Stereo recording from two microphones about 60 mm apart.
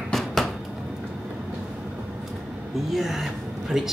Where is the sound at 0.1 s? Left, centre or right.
Centre.